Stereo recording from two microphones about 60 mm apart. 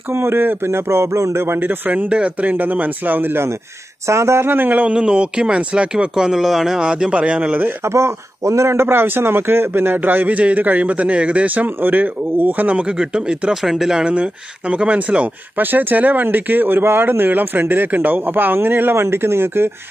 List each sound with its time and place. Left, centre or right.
0.1 s a sound: right
1.6 s a man's voice: right
4.1 s a sound: right
4.5 s speech: right
4.9 s speech: centre
7.9 s a man's voice: right
13.1 s speech: centre
14.7 s a man's voice: right